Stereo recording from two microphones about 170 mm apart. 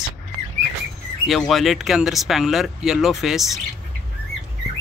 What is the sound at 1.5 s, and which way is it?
Speech, centre (ahead or behind).